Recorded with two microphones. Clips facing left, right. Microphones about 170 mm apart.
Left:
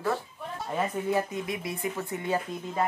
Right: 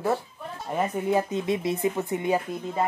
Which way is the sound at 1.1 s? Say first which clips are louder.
Right 4 dB; 20° right (ahead or behind).